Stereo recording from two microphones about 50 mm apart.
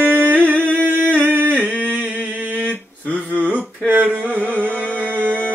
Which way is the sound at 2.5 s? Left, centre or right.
Left.